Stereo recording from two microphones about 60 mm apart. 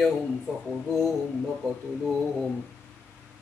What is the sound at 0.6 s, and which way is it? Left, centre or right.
Mantra, centre.